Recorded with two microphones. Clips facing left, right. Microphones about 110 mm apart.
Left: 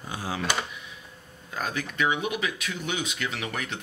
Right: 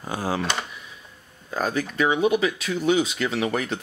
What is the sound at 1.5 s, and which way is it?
Speech, 35° right (ahead or behind).